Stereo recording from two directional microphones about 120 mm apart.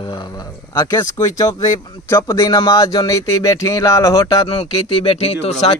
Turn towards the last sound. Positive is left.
turn(degrees=60)  # may be behind; listen again after turning